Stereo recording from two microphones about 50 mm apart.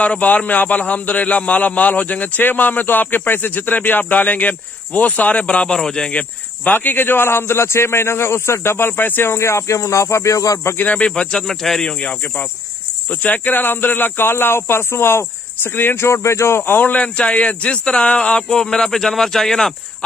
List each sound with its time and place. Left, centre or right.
0.0 s a man's voice: left
5.7 s speech: centre
6.6 s speech: left
9.4 s speech: left
10.8 s a man's voice: left
11.1 s speech: centre
13.2 s speech: left
16.1 s speech: left
16.7 s speech: left; by 20.1 s centre